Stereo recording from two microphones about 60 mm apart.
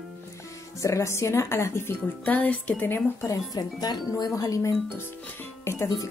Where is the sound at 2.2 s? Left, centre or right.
Left.